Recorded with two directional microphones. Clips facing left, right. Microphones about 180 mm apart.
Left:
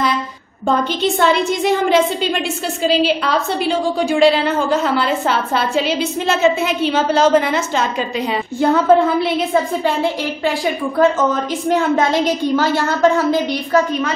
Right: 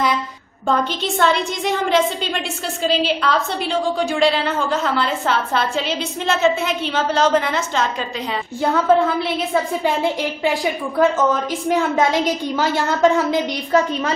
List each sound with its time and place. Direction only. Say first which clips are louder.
1.0 s a woman's voice: left 5 dB; 5° left (ahead or behind)
10.4 s a woman's voice: left 2 dB; 15° right (ahead or behind)